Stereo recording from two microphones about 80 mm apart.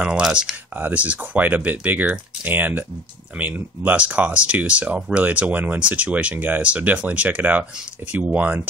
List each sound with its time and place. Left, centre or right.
0.0 s speech: centre
0.7 s speech: centre